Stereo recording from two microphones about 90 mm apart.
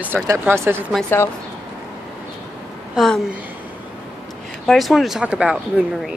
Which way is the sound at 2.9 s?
5° left (ahead or behind).